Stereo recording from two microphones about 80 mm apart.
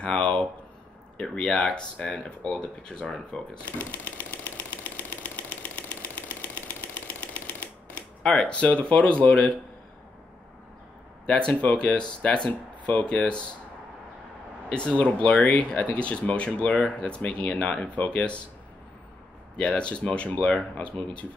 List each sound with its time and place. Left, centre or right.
0.0 s a sound: centre
1.1 s speech: centre
3.6 s typewriter: centre
8.2 s speech: centre
11.2 s speech: centre
14.7 s speech: centre
19.5 s speech: centre